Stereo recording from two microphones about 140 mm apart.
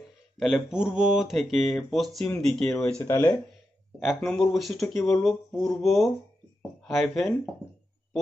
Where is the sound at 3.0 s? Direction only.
20° left (ahead or behind).